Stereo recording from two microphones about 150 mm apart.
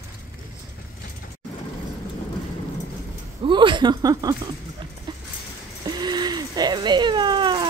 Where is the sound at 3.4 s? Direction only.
35° right (ahead or behind).